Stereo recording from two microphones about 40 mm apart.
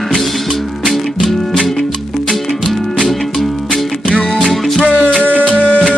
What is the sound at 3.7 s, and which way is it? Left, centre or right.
Music, left.